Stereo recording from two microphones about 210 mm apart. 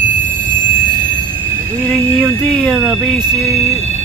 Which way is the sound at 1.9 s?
5° left (ahead or behind).